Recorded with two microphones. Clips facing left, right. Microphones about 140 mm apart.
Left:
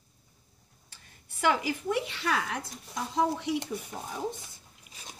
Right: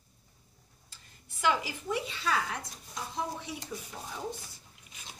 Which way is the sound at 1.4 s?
55° left (ahead or behind).